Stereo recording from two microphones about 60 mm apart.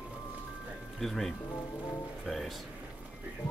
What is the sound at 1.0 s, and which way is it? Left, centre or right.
Speech, centre.